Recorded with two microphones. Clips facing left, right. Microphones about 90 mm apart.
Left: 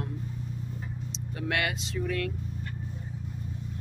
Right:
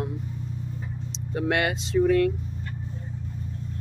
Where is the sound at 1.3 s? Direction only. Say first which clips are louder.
Right 6 dB; 30° right (ahead or behind).